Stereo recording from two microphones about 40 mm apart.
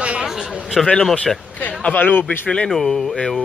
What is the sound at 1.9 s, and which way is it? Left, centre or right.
Speech, left.